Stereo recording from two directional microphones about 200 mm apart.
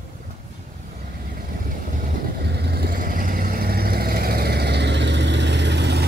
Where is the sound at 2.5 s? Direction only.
55° right (ahead or behind).